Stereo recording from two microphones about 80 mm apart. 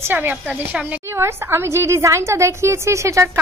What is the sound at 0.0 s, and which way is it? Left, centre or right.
A woman's voice, right.